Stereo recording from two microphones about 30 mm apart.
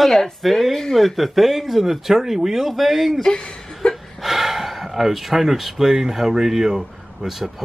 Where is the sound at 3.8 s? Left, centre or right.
Left.